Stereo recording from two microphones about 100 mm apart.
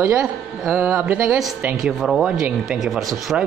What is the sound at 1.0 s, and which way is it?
Speech, 10° right (ahead or behind).